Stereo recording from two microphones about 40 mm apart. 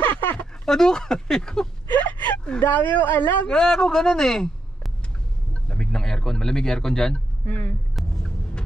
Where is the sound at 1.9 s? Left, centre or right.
Left.